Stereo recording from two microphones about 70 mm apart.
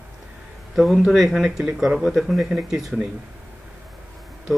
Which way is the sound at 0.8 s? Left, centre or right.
Centre.